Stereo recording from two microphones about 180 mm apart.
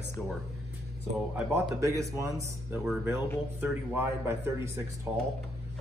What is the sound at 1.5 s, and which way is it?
Speech, 15° right (ahead or behind).